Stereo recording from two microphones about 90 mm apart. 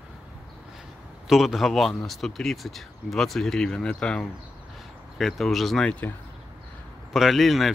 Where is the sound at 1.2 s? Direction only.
5° right (ahead or behind).